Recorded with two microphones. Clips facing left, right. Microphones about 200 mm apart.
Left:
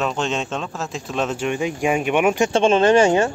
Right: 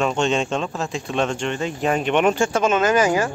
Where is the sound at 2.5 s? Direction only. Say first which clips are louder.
Left 4 dB; 30° left (ahead or behind).